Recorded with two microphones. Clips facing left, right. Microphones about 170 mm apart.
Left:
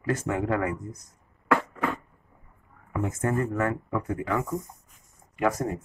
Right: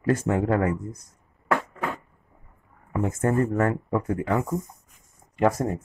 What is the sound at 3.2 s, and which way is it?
Speech, 35° right (ahead or behind).